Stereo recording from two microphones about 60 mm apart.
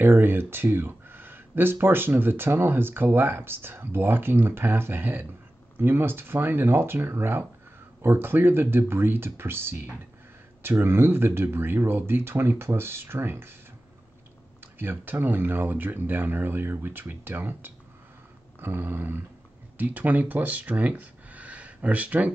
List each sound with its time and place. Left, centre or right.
0.0 s speech: right
14.8 s speech: right